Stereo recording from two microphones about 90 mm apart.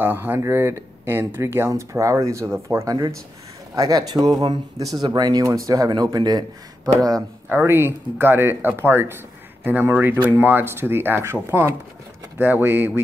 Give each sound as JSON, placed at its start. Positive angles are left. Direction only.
{"t": 0.0, "sound": "speech", "side_deg": -25}
{"t": 7.4, "sound": "speech", "side_deg": -25}